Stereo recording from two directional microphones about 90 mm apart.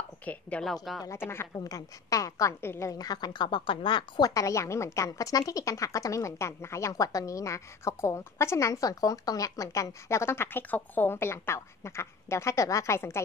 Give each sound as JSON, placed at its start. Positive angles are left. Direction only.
{"t": 0.2, "sound": "speech", "side_deg": 15}
{"t": 1.0, "sound": "a woman's voice", "side_deg": 30}
{"t": 1.6, "sound": "a woman's voice", "side_deg": 40}
{"t": 3.0, "sound": "a woman's voice", "side_deg": 50}
{"t": 4.3, "sound": "a woman's voice", "side_deg": 35}